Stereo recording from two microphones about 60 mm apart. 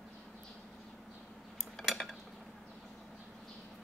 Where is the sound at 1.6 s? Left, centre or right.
Centre.